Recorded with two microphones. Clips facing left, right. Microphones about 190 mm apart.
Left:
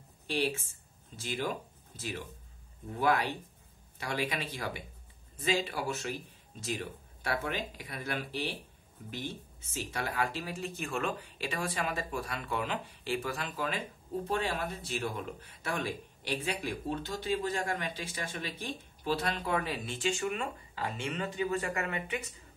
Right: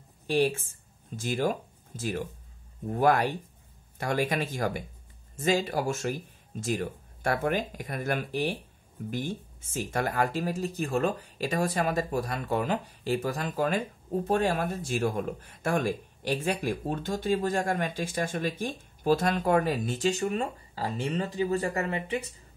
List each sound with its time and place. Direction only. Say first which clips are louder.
0.3 s speech: right 7 dB; 50° right (ahead or behind)